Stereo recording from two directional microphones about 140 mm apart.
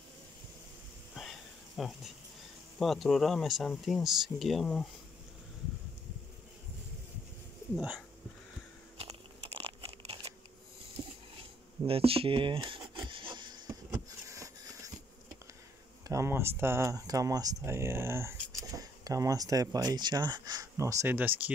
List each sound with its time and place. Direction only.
1.8 s speech: centre (ahead or behind)
7.7 s speech: 10° right (ahead or behind)
8.9 s crunch: 45° right (ahead or behind)
11.8 s speech: 40° right (ahead or behind)
12.9 s wood: 35° right (ahead or behind)
16.1 s speech: 20° right (ahead or behind)